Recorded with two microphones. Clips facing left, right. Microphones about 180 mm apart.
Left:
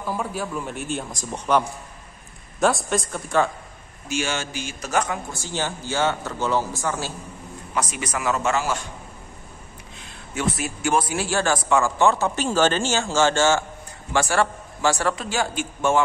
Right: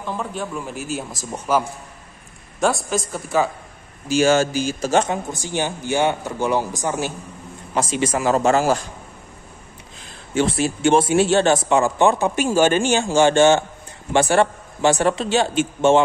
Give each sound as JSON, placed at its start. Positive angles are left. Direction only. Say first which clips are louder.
{"t": 0.0, "sound": "a man's voice", "louder": "even", "side_deg": 5}
{"t": 2.6, "sound": "a man's voice", "louder": "right 1 dB", "side_deg": 0}
{"t": 4.1, "sound": "a man's voice", "louder": "right 11 dB", "side_deg": -40}
{"t": 7.7, "sound": "a man's voice", "louder": "right 7 dB", "side_deg": -30}
{"t": 10.3, "sound": "a man's voice", "louder": "right 7 dB", "side_deg": -30}